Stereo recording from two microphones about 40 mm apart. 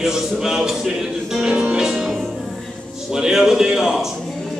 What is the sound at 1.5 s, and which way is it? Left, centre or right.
Music, right.